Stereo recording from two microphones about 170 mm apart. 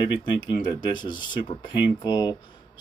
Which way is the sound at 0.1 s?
25° left (ahead or behind).